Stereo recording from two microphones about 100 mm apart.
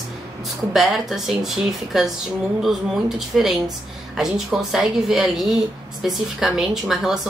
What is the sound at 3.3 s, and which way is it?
A woman's voice, centre (ahead or behind).